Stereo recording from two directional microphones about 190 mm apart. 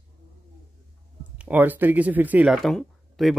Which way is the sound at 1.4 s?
10° right (ahead or behind).